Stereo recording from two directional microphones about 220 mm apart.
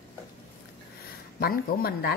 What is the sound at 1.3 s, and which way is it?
Speech, 40° left (ahead or behind).